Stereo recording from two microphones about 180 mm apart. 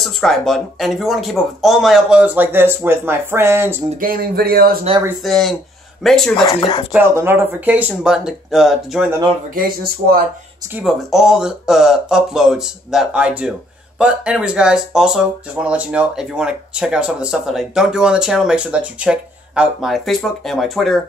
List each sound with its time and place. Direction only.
0.0 s speech: centre (ahead or behind)
4.0 s speech: 55° right (ahead or behind)
5.2 s speech: centre (ahead or behind)
6.4 s speech: 25° left (ahead or behind)
6.9 s speech: 10° right (ahead or behind)
9.6 s speech: 55° right (ahead or behind)
10.7 s speech: 5° right (ahead or behind)